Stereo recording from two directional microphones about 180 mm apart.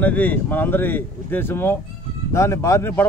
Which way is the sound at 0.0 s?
10° left (ahead or behind).